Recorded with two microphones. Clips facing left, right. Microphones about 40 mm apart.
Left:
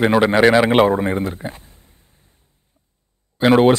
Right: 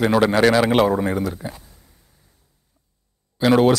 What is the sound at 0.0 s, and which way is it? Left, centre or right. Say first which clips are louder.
A man's voice: left 2 dB; left.